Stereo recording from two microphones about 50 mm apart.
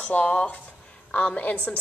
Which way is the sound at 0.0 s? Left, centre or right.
Left.